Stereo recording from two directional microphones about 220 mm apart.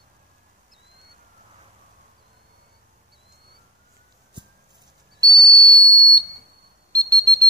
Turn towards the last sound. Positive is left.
turn(degrees=-15)  # may be behind; listen again after turning